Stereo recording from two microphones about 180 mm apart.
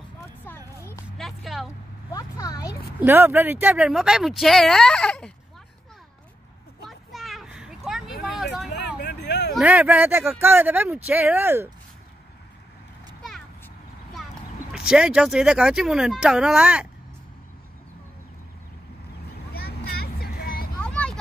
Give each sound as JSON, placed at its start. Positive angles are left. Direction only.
{"t": 0.7, "sound": "a sound", "side_deg": 15}
{"t": 1.1, "sound": "vehicle", "side_deg": 0}
{"t": 2.0, "sound": "a sound", "side_deg": 20}
{"t": 3.0, "sound": "speech", "side_deg": -15}
{"t": 7.1, "sound": "a sound", "side_deg": 0}
{"t": 9.0, "sound": "vehicle", "side_deg": 65}
{"t": 9.6, "sound": "speech", "side_deg": -10}
{"t": 14.7, "sound": "speech", "side_deg": -5}
{"t": 19.5, "sound": "vehicle", "side_deg": 60}
{"t": 20.8, "sound": "vehicle", "side_deg": 5}